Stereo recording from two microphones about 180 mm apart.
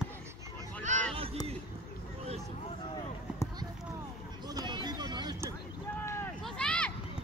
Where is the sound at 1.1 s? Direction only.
30° right (ahead or behind).